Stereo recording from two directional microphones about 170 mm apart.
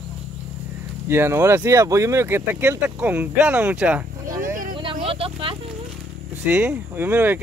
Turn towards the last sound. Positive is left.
turn(degrees=-10)  # may be behind; listen again after turning